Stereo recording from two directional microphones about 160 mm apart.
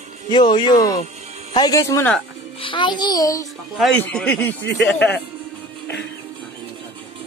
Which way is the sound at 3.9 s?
10° left (ahead or behind).